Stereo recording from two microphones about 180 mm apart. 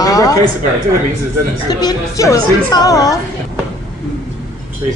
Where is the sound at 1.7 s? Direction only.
20° left (ahead or behind).